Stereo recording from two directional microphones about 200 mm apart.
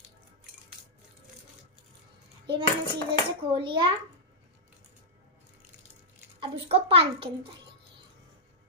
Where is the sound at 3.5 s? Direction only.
25° right (ahead or behind).